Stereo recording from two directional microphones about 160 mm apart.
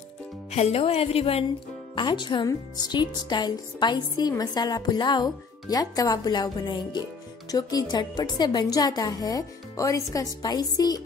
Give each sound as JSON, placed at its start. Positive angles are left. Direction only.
{"t": 0.5, "sound": "speech", "side_deg": 40}